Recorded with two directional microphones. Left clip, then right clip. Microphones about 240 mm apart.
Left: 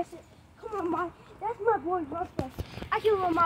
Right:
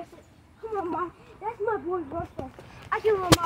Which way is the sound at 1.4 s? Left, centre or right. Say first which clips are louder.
Left 1 dB; centre.